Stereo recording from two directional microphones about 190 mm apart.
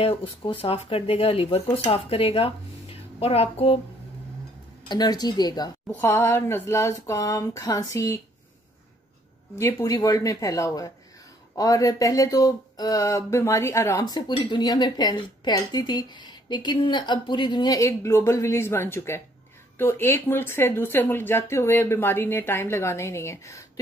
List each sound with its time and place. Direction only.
0.0 s speech: 30° left (ahead or behind)
4.8 s speech: 20° left (ahead or behind)
9.6 s speech: 15° left (ahead or behind)